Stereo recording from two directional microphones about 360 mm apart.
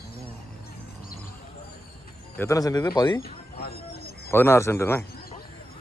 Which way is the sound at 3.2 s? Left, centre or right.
Left.